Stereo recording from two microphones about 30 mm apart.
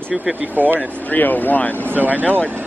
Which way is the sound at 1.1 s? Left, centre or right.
Left.